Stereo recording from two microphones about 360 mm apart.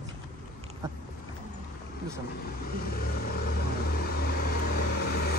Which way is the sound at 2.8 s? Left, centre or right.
Left.